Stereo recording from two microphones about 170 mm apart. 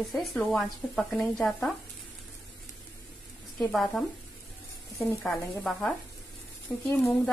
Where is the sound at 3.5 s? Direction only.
5° left (ahead or behind).